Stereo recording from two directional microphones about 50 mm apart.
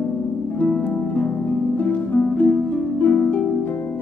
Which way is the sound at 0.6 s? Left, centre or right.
Left.